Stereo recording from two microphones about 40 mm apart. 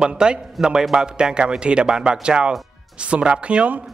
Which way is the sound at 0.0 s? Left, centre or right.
Centre.